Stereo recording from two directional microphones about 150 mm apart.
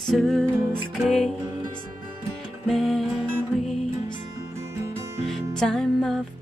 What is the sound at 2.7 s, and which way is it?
Music, centre (ahead or behind).